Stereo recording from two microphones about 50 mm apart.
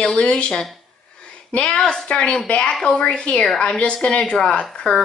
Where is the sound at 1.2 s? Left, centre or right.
Left.